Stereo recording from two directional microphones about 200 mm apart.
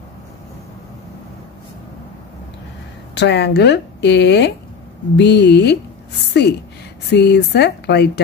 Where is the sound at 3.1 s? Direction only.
55° left (ahead or behind).